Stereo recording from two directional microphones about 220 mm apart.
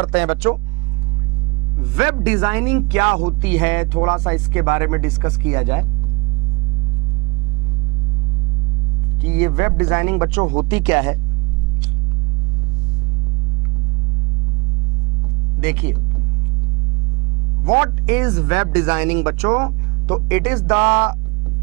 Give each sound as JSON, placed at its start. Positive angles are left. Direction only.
{"t": 0.1, "sound": "speech", "side_deg": -10}
{"t": 2.2, "sound": "speech", "side_deg": -10}
{"t": 9.2, "sound": "speech", "side_deg": -15}
{"t": 10.7, "sound": "speech", "side_deg": -10}
{"t": 15.6, "sound": "speech", "side_deg": -10}
{"t": 17.6, "sound": "speech", "side_deg": -20}